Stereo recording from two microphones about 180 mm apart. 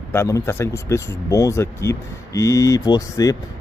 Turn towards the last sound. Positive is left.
turn(degrees=20)  # may be behind; listen again after turning